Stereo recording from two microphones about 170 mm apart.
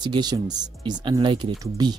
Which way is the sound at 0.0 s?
25° right (ahead or behind).